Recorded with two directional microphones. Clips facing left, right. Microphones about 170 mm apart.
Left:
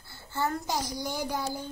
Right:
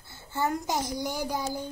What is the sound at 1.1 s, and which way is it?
Speech, 10° right (ahead or behind).